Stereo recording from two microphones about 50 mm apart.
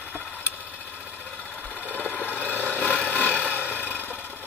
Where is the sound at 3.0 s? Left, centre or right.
Left.